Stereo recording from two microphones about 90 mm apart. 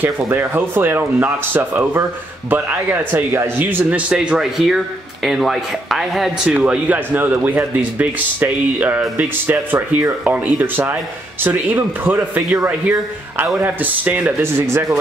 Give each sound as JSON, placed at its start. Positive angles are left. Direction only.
{"t": 0.0, "sound": "speech", "side_deg": -25}
{"t": 6.5, "sound": "speech", "side_deg": -15}
{"t": 14.7, "sound": "speech", "side_deg": -30}